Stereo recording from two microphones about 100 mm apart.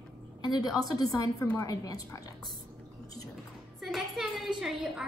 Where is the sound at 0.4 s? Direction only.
45° left (ahead or behind).